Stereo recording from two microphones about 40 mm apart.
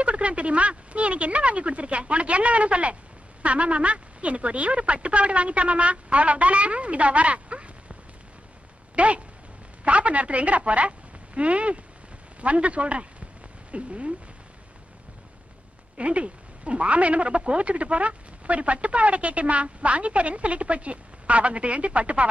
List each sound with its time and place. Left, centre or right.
0.0 s speech: right
16.0 s speech: right